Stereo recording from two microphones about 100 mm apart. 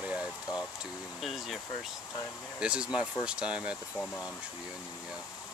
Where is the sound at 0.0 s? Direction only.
10° right (ahead or behind).